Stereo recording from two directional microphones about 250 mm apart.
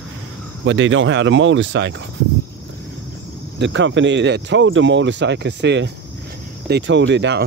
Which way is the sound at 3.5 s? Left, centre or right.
Right.